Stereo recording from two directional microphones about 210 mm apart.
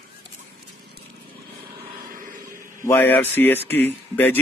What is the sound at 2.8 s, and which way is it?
Speech, 10° left (ahead or behind).